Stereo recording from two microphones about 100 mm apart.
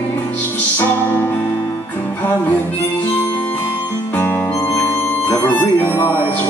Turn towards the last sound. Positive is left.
turn(degrees=15)  # may be behind; listen again after turning